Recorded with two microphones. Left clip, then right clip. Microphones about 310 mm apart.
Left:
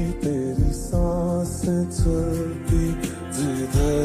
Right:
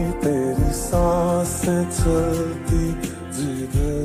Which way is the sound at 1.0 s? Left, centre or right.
Right.